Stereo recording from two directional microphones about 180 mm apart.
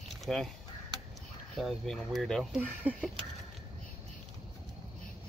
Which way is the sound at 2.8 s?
10° right (ahead or behind).